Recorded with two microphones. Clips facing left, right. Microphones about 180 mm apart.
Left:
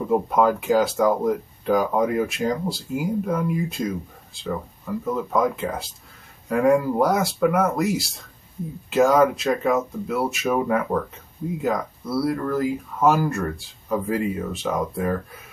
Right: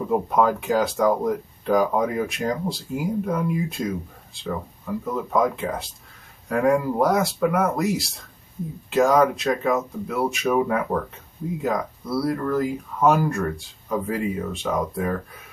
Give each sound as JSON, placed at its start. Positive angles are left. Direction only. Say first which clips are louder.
{"t": 0.1, "sound": "speech", "louder": "left 1 dB", "side_deg": 0}